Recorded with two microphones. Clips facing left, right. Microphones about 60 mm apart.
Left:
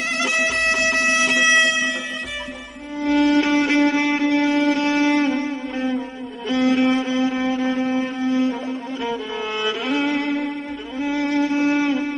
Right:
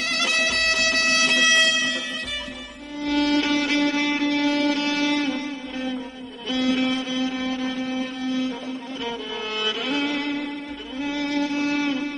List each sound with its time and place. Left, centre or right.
0.2 s music: left
3.0 s music: left